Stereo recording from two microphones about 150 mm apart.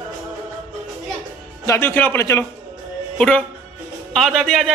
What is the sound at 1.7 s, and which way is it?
Speech, 15° left (ahead or behind).